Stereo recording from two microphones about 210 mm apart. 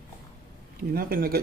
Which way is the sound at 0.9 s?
45° right (ahead or behind).